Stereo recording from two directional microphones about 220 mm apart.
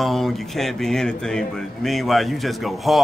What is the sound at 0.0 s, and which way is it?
Speech, centre (ahead or behind).